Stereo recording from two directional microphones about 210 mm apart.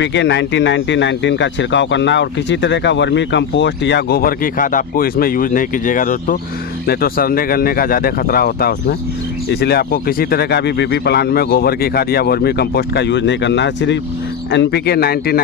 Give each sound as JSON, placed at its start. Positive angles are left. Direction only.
{"t": 0.0, "sound": "speech", "side_deg": 55}